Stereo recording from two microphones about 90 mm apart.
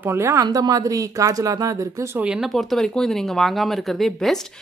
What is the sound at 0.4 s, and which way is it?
Speech, 45° right (ahead or behind).